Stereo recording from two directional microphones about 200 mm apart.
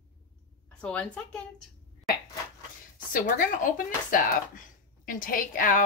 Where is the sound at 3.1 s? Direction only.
45° left (ahead or behind).